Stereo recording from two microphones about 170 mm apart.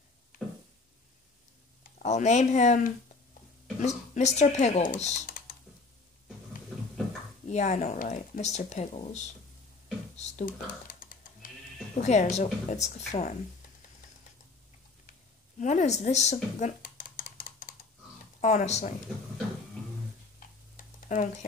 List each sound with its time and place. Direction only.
0.3 s a sound: 55° left (ahead or behind)
1.8 s speech: 40° left (ahead or behind)
7.4 s speech: 40° left (ahead or behind)
10.1 s computer keyboard: 45° left (ahead or behind)
11.9 s speech: 45° left (ahead or behind)
15.6 s dishes: 45° left (ahead or behind)
18.4 s speech: 45° left (ahead or behind)
20.3 s tick-tock: 50° left (ahead or behind)